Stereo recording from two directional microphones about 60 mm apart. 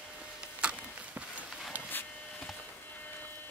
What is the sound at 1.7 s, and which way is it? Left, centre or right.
Printer, right.